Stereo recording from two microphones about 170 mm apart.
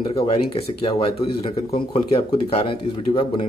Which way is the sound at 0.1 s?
35° left (ahead or behind).